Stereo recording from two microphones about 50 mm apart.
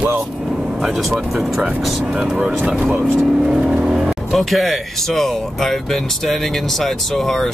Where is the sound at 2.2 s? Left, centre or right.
Centre.